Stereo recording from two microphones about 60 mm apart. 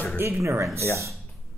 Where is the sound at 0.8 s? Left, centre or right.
Left.